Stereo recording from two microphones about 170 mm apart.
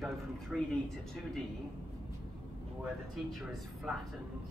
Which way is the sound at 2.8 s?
Centre (ahead or behind).